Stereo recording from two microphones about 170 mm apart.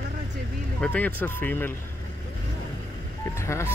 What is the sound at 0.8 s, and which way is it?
Speech, 10° left (ahead or behind).